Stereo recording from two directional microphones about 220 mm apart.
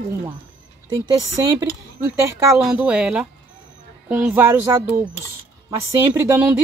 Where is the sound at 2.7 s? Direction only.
5° right (ahead or behind).